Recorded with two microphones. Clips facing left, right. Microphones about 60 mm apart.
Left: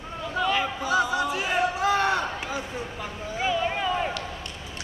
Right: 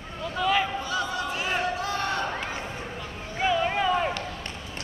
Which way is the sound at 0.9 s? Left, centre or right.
Left.